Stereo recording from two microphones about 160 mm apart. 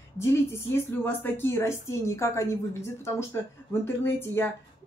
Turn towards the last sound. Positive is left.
turn(degrees=15)  # may be behind; listen again after turning